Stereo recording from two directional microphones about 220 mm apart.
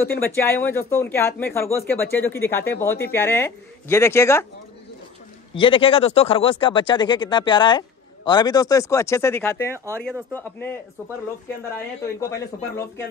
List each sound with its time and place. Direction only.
0.2 s speech: 10° left (ahead or behind)
5.6 s speech: 25° left (ahead or behind)
12.2 s speech: 10° left (ahead or behind)